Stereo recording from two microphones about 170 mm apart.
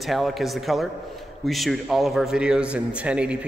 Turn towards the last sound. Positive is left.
turn(degrees=-5)  # may be behind; listen again after turning